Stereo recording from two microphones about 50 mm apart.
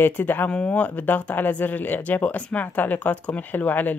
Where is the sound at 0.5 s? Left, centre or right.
Left.